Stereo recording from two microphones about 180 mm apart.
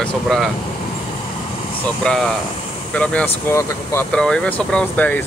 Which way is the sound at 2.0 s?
5° left (ahead or behind).